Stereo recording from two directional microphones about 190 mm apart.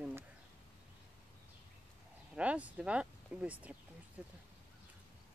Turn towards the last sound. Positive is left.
turn(degrees=-5)  # may be behind; listen again after turning